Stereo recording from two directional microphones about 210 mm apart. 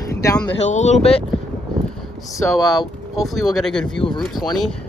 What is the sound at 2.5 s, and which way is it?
Speech, centre (ahead or behind).